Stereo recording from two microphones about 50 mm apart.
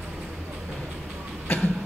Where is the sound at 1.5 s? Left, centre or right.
Left.